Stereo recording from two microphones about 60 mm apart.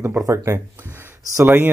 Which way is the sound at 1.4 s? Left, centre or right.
Right.